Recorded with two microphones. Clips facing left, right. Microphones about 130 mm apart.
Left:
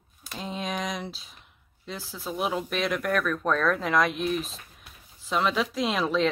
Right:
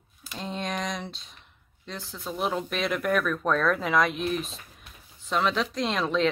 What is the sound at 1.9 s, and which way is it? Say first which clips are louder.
Speech: left 1 dB; 5° left (ahead or behind).